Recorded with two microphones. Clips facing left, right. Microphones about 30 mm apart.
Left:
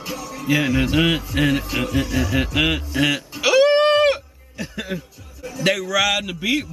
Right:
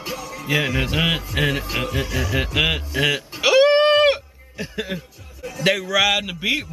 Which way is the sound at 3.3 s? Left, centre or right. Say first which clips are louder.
Right 1 dB; centre.